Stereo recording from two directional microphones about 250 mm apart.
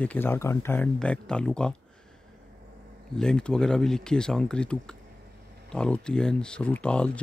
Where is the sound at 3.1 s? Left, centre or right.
Centre.